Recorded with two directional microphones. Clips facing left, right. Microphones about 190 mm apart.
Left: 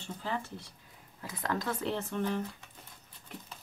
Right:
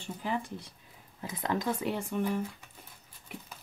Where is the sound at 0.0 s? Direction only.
15° right (ahead or behind).